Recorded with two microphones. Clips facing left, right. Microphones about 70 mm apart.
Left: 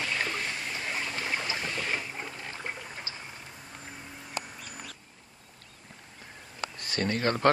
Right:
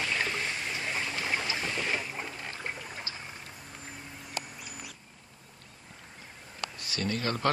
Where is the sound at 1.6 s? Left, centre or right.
Centre.